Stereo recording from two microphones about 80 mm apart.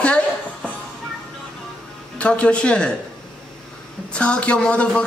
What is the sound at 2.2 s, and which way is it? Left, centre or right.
Speech, centre.